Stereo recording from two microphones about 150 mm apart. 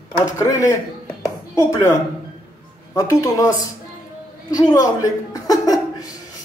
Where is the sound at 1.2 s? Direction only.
20° left (ahead or behind).